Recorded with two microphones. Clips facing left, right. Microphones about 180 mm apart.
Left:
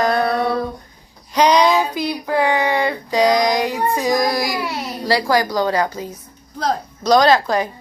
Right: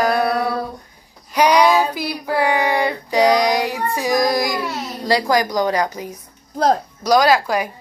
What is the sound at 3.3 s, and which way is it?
Child singing, 15° left (ahead or behind).